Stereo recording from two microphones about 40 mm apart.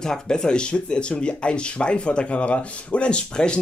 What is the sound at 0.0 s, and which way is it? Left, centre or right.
Speech, centre.